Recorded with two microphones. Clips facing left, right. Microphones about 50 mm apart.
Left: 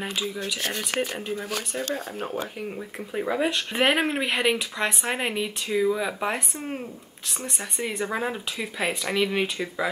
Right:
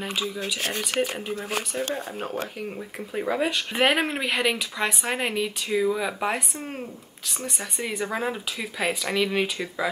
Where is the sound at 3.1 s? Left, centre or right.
Centre.